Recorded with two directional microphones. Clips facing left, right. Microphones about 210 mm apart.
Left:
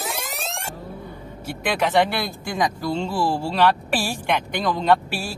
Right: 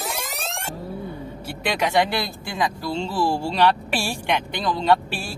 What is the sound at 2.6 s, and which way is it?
Speech, 10° left (ahead or behind).